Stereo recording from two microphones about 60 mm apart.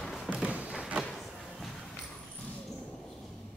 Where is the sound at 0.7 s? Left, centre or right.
Centre.